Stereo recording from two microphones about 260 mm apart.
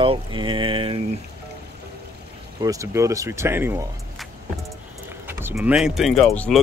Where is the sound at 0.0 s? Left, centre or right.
Centre.